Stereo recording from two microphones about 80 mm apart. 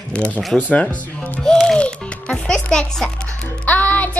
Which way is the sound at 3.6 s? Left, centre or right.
Centre.